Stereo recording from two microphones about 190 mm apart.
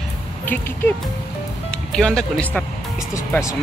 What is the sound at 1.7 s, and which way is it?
Speech, 5° left (ahead or behind).